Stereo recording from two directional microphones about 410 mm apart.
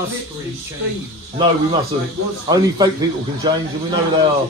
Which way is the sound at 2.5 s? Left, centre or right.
Centre.